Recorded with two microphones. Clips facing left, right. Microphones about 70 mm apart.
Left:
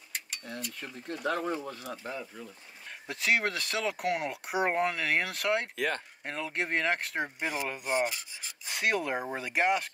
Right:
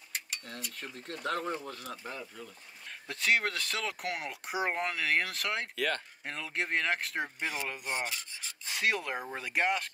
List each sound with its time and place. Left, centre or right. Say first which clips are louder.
0.4 s speech: left 3 dB; centre
5.8 s speech: left 1 dB; centre
6.2 s speech: left 3 dB; centre